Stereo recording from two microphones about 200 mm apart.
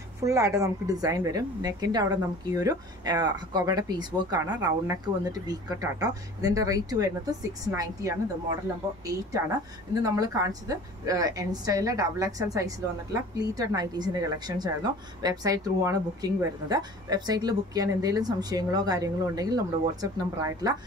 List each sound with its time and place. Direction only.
0.2 s a woman's voice: 15° right (ahead or behind)
10.0 s a woman's voice: 15° right (ahead or behind)